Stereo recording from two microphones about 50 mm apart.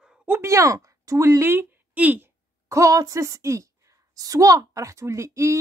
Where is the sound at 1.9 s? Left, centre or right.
Right.